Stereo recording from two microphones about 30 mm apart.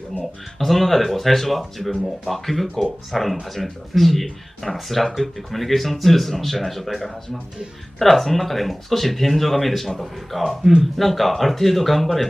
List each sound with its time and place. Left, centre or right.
0.2 s speech: centre